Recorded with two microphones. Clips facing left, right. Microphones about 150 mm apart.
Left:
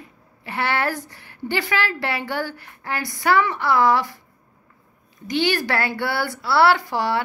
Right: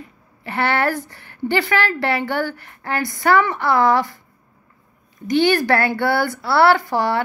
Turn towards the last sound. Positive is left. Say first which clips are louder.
# right 3 dB
turn(degrees=-50)  # may be behind; listen again after turning